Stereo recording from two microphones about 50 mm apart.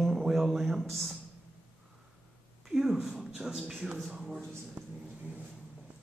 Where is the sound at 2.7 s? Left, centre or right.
Centre.